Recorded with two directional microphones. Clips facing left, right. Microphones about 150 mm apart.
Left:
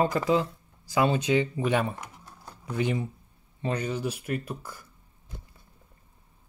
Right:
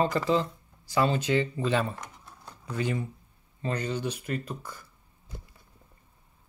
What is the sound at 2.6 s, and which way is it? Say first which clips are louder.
Speech: left 2 dB; 20° left (ahead or behind).